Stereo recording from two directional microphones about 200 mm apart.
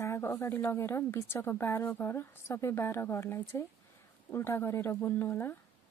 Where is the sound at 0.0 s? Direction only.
15° left (ahead or behind).